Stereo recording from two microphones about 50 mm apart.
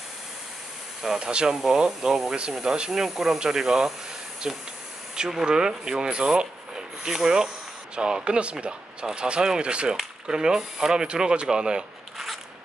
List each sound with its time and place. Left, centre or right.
1.0 s speech: centre